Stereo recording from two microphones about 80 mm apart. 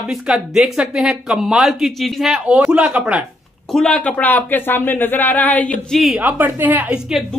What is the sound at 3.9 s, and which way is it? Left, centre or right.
Speech, centre.